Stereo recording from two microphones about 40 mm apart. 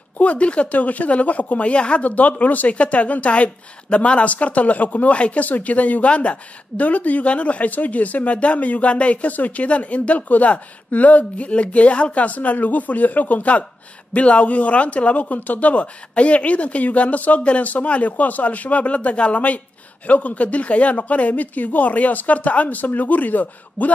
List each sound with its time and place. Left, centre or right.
0.2 s speech: left